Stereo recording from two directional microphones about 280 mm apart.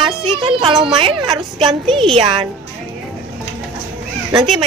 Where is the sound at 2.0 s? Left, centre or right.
Centre.